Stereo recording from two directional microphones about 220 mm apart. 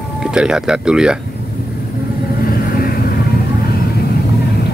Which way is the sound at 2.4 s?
40° left (ahead or behind).